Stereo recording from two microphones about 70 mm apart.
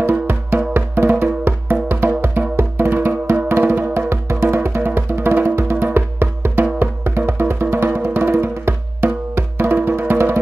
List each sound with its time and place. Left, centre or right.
0.7 s music: right